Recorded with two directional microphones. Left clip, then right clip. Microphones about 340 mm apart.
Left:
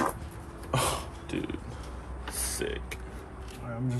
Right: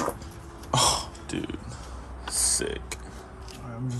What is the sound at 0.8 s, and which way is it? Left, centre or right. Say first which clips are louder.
Burping: right 8 dB; centre.